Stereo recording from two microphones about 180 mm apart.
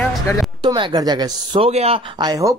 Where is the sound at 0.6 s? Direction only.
25° right (ahead or behind).